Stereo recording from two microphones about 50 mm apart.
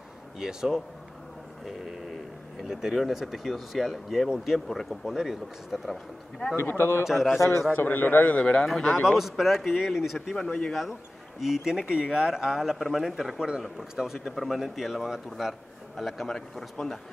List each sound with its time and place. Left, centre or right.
0.4 s speech: centre
2.6 s speech: centre
6.5 s a man's voice: left
7.7 s a man's voice: left
8.4 s a man's voice: left
9.0 s speech: centre
10.3 s speech: centre
10.7 s speech: centre